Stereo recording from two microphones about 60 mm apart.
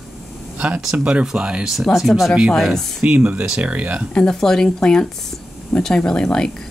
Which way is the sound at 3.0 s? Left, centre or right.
Right.